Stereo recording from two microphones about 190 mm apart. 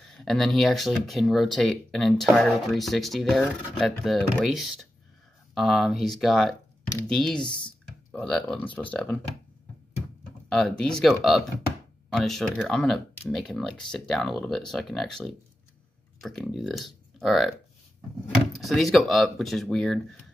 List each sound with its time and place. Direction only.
0.0 s speech: 5° left (ahead or behind)
10.5 s speech: 5° left (ahead or behind)